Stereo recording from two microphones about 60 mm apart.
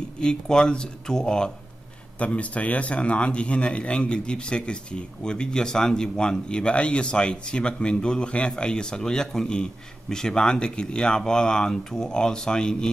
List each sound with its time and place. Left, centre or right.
0.2 s a man's voice: centre